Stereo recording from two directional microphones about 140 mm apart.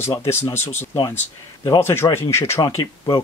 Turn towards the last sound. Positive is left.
turn(degrees=30)  # may be behind; listen again after turning